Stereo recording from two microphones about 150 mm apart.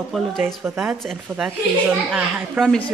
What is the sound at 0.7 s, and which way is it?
A woman's voice, 5° right (ahead or behind).